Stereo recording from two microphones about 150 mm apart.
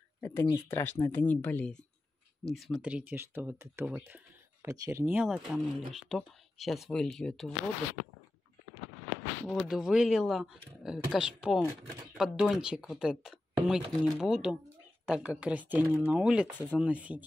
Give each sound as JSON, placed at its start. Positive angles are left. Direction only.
{"t": 0.2, "sound": "speech", "side_deg": 15}
{"t": 2.5, "sound": "speech", "side_deg": 0}
{"t": 9.5, "sound": "speech", "side_deg": 0}